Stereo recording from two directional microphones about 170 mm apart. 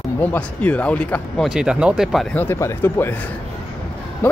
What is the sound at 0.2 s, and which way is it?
Speech, 10° left (ahead or behind).